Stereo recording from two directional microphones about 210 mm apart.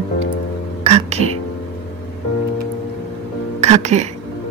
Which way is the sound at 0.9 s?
30° right (ahead or behind).